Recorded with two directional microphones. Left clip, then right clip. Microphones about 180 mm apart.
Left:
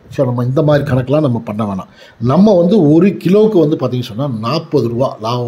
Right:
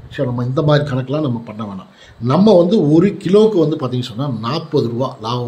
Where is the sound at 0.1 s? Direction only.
20° left (ahead or behind).